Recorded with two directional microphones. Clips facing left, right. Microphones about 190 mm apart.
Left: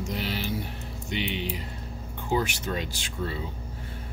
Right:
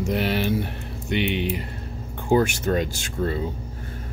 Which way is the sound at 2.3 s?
50° right (ahead or behind).